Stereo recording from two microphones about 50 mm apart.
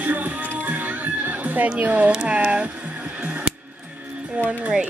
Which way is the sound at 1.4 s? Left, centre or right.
Right.